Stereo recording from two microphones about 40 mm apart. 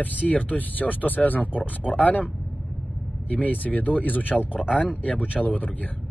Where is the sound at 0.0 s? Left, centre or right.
Left.